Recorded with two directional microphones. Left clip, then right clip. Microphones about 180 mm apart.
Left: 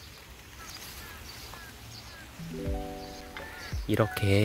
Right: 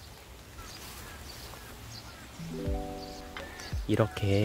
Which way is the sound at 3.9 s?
5° left (ahead or behind).